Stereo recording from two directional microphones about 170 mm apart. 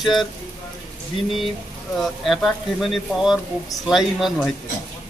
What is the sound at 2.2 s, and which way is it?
Speech, centre (ahead or behind).